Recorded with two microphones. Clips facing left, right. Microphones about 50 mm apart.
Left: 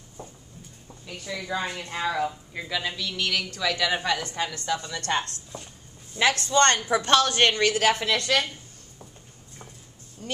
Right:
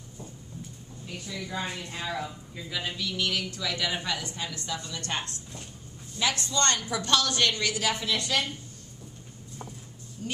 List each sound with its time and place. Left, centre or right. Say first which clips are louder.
1.5 s a woman's voice: left 5 dB; left
6.2 s a woman's voice: left 6 dB; left
6.5 s a woman's voice: left 7 dB; left
10.2 s speech: left 2 dB; left